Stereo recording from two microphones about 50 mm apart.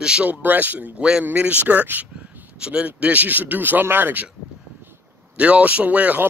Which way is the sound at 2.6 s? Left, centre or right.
Right.